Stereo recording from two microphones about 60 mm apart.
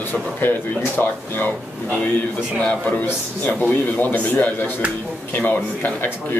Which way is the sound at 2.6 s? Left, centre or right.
Left.